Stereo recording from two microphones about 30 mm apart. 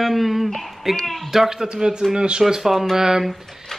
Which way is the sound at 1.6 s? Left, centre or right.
Right.